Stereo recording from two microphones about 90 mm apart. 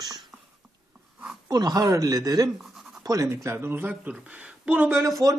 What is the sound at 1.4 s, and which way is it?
Speech, 45° right (ahead or behind).